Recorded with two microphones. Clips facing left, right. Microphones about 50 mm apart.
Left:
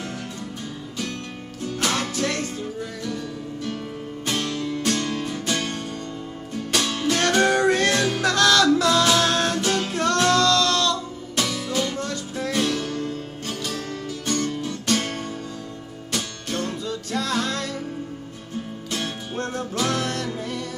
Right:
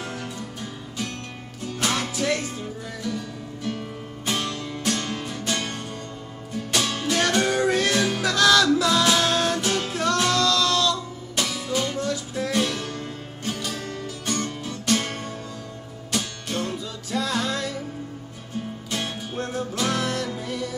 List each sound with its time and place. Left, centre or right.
1.8 s music: centre
4.3 s music: centre
13.6 s music: centre
16.1 s music: centre
18.9 s music: centre